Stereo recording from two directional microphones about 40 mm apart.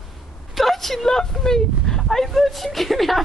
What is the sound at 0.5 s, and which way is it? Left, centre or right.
Speech, centre.